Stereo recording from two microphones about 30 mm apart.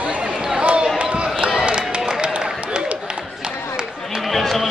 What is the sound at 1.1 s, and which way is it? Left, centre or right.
Basketball bounce, right.